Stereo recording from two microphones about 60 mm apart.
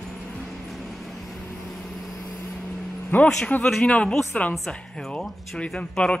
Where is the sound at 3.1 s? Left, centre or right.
Left.